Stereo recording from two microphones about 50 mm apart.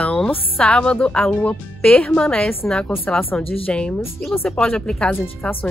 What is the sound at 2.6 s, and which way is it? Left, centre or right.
Speech, centre.